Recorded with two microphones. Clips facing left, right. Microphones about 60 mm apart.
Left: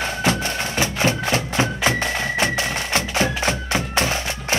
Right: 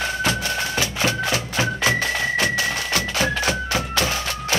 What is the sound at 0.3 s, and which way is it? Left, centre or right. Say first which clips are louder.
Music: left 1 dB; left.